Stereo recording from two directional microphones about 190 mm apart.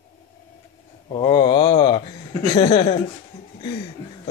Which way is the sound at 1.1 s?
25° left (ahead or behind).